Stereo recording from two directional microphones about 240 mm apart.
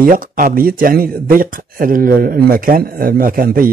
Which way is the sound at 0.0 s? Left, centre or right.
Right.